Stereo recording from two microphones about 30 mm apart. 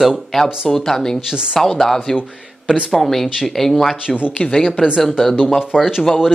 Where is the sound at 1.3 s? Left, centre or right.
Right.